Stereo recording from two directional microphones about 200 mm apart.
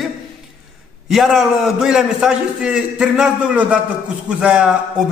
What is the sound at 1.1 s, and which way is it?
A man's voice, centre (ahead or behind).